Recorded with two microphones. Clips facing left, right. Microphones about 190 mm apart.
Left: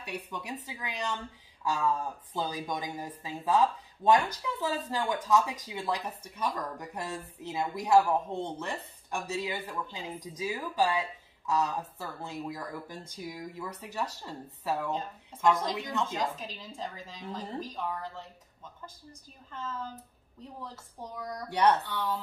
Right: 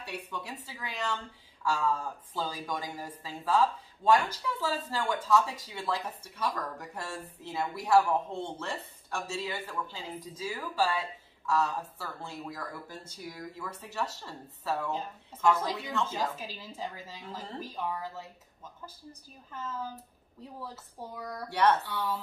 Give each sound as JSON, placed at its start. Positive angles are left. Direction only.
{"t": 0.0, "sound": "speech", "side_deg": 15}
{"t": 16.1, "sound": "speech", "side_deg": -5}
{"t": 19.5, "sound": "speech", "side_deg": -10}
{"t": 21.5, "sound": "speech", "side_deg": 15}
{"t": 21.9, "sound": "speech", "side_deg": -10}